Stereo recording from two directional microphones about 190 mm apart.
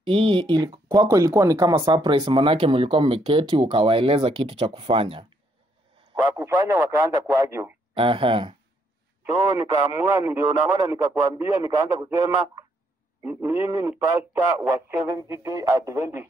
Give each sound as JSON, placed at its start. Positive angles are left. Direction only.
{"t": 0.0, "sound": "speech", "side_deg": -25}
{"t": 6.3, "sound": "a man's voice", "side_deg": -10}
{"t": 7.9, "sound": "speech", "side_deg": -25}
{"t": 9.2, "sound": "a man's voice", "side_deg": -15}